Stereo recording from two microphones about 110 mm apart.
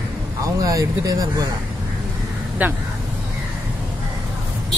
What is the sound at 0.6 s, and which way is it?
Speech, 30° right (ahead or behind).